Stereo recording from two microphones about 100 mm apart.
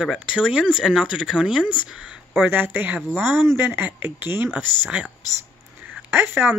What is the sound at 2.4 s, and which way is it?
Speech, 20° right (ahead or behind).